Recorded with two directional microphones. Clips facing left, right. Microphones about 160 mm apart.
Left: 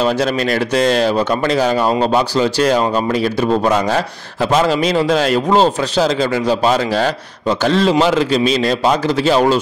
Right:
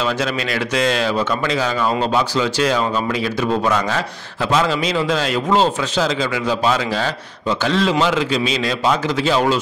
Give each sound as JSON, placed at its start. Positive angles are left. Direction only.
{"t": 0.0, "sound": "a man's voice", "side_deg": 40}